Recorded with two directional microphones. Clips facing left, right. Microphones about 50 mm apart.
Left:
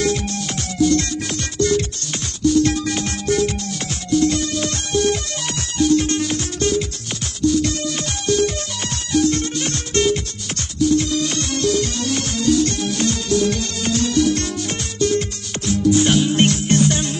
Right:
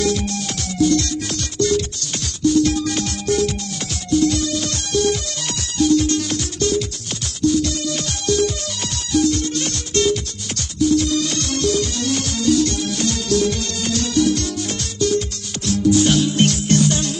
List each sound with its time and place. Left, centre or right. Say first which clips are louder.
0.1 s music: even; left
5.5 s music: even; left
8.8 s music: even; left
12.2 s music: even; left